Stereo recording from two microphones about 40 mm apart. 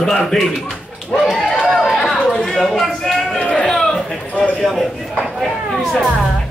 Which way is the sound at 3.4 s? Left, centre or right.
Left.